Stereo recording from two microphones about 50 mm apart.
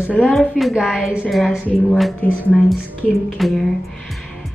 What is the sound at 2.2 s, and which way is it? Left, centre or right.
Speech, left.